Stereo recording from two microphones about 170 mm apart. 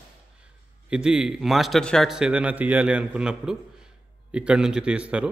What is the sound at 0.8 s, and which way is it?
A man's voice, 5° right (ahead or behind).